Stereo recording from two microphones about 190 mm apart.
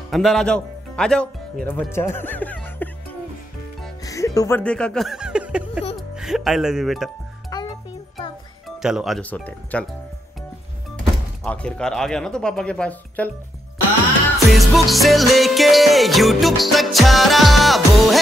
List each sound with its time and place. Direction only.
0.1 s speech: centre (ahead or behind)
1.7 s music: 15° left (ahead or behind); by 5.7 s 5° right (ahead or behind)
5.9 s speech: centre (ahead or behind)
7.5 s music: 20° left (ahead or behind)
8.6 s speech: centre (ahead or behind)
11.4 s music: 5° left (ahead or behind)
14.5 s music: centre (ahead or behind)